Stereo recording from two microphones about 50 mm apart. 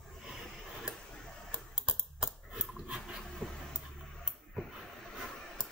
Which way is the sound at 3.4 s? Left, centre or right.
Left.